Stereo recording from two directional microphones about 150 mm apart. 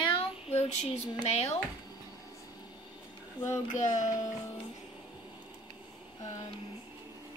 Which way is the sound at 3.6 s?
55° left (ahead or behind).